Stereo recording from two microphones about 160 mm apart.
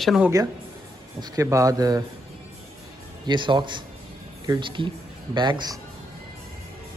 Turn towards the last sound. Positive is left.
turn(degrees=-25)  # may be behind; listen again after turning